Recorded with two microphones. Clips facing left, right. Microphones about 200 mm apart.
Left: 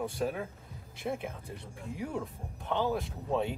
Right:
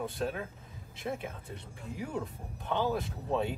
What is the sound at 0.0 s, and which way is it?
Speech, centre (ahead or behind).